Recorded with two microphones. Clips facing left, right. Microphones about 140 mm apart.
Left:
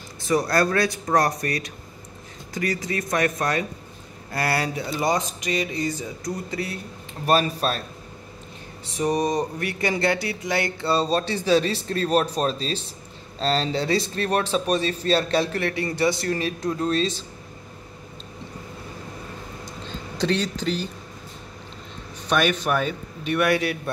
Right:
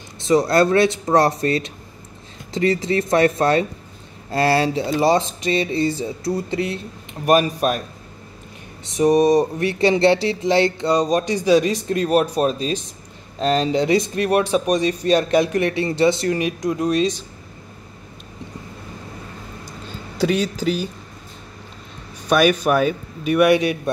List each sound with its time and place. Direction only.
0.2 s speech: 20° right (ahead or behind)
8.8 s speech: 20° right (ahead or behind)
20.2 s speech: 10° right (ahead or behind)
22.3 s speech: 10° right (ahead or behind)